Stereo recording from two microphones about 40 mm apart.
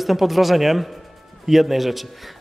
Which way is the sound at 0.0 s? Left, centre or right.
Centre.